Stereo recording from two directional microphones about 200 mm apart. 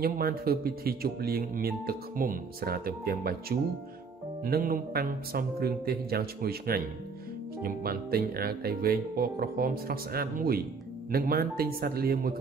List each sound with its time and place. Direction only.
0.0 s speech: 50° right (ahead or behind)